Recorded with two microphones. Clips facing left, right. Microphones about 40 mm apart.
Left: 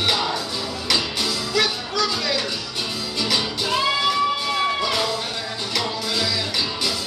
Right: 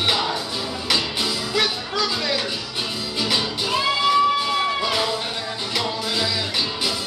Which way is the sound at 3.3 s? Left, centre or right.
Centre.